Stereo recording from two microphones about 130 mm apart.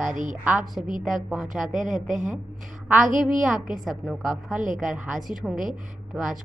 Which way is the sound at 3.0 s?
85° right.